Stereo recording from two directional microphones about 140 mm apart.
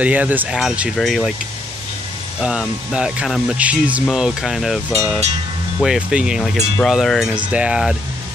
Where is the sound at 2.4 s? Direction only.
5° right (ahead or behind).